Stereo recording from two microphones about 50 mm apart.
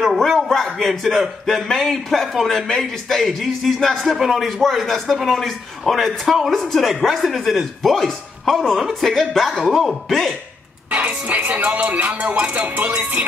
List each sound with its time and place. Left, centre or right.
0.0 s a sound: centre
0.5 s speech: centre
11.0 s music: right